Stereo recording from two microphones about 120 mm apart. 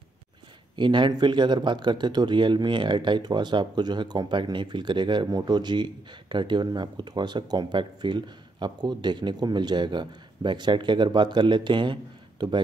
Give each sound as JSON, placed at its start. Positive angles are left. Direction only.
{"t": 0.7, "sound": "speech", "side_deg": -40}